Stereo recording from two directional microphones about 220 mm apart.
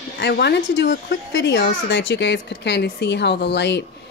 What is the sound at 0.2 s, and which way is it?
A woman's voice, 50° left (ahead or behind).